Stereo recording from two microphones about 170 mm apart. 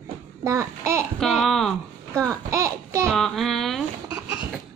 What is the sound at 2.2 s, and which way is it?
Child singing, 20° right (ahead or behind).